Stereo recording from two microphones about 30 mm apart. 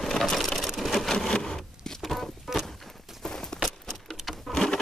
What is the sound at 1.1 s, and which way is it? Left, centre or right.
Wood, centre.